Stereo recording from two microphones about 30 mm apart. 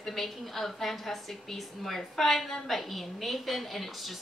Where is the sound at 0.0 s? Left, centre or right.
Centre.